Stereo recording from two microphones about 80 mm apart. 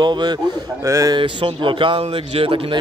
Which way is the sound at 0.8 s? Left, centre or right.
Right.